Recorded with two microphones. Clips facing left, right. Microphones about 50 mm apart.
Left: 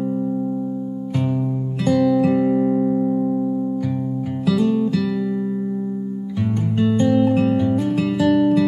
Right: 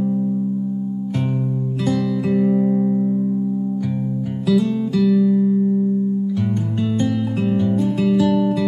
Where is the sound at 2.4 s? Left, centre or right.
Centre.